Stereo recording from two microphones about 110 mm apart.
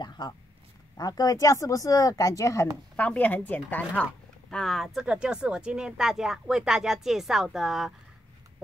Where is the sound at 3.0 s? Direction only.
15° left (ahead or behind); by 7.9 s 5° right (ahead or behind).